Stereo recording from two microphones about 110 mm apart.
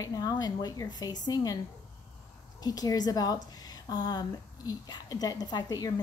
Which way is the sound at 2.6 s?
35° left (ahead or behind).